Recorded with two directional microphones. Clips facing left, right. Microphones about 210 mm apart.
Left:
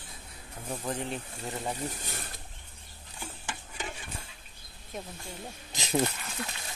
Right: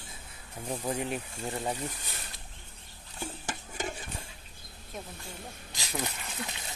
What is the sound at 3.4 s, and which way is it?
Stir, 45° right (ahead or behind).